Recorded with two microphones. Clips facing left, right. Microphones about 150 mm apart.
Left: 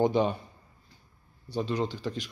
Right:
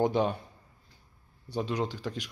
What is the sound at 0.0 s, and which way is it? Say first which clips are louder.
Speech: left 2 dB; centre (ahead or behind).